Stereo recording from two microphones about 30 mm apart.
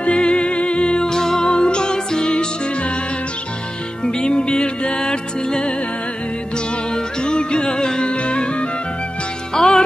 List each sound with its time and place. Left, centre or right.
0.0 s music: left
1.0 s music: centre
1.5 s music: left
4.0 s music: left
6.9 s music: left
8.1 s music: left
9.5 s music: left